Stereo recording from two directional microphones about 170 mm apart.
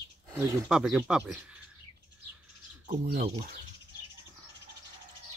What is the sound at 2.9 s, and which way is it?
Speech, 60° right (ahead or behind).